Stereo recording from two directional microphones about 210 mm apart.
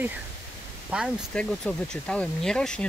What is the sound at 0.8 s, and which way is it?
Speech, 5° right (ahead or behind).